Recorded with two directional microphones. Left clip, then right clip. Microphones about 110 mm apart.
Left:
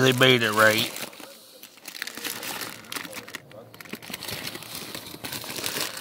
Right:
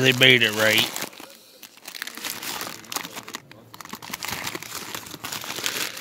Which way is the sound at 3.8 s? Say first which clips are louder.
Right 3 dB; 40° right (ahead or behind).